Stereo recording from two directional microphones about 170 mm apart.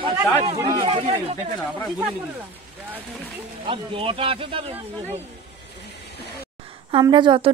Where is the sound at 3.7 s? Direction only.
30° right (ahead or behind).